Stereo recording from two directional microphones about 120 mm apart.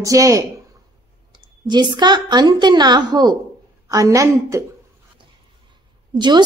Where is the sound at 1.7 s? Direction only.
40° right (ahead or behind).